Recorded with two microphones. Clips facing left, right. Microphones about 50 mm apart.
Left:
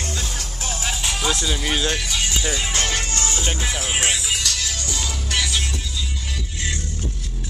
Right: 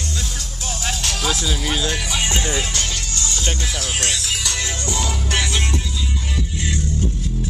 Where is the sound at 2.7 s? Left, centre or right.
Left.